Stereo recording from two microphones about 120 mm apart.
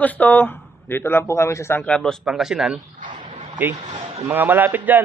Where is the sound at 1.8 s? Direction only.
5° left (ahead or behind).